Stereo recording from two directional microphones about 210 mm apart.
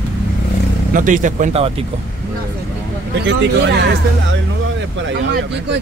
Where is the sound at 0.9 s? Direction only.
40° right (ahead or behind).